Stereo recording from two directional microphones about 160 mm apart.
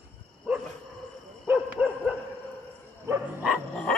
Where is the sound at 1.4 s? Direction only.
5° right (ahead or behind).